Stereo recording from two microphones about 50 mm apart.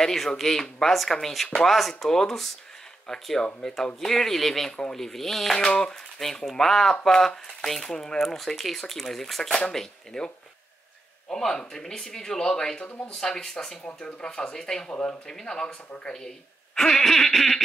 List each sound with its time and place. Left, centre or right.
0.0 s speech: centre
5.6 s a sound: centre
6.1 s speech: centre